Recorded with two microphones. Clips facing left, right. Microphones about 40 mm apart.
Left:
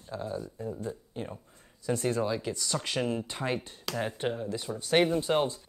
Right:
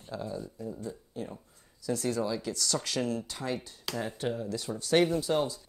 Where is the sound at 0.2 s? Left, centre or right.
Left.